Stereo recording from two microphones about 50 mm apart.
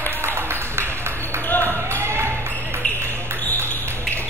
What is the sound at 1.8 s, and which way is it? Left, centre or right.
Basketball bounce, right.